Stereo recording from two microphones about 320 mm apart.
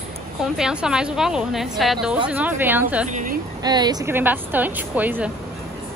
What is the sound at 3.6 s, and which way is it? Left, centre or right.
Speech, centre.